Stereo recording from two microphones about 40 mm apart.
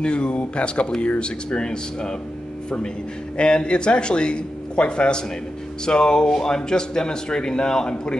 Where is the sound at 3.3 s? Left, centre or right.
Left.